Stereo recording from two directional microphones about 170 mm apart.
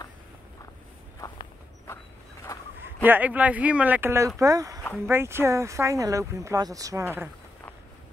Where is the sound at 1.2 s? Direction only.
15° left (ahead or behind).